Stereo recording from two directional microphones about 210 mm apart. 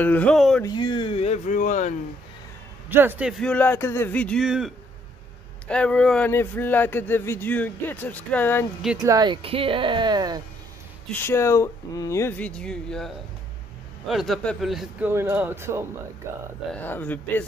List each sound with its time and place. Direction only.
0.0 s speech: 5° left (ahead or behind)
0.6 s speech: 20° left (ahead or behind); by 2.0 s 35° left (ahead or behind)
2.9 s speech: 10° right (ahead or behind); by 8.6 s 10° left (ahead or behind)
9.0 s speech: 20° right (ahead or behind)
11.1 s speech: 10° left (ahead or behind); by 16.4 s 10° right (ahead or behind)
16.7 s speech: 10° left (ahead or behind)